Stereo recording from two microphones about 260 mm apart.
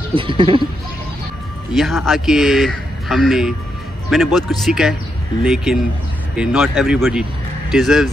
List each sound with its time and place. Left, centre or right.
0.1 s speech: centre
1.7 s a man's voice: centre